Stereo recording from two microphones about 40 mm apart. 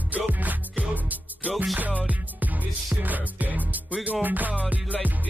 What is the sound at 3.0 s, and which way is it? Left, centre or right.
Music, right.